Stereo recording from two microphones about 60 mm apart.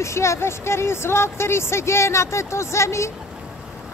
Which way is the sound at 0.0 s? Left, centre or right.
Left.